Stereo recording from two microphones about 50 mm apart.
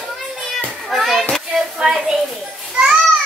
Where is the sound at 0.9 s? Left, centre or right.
Centre.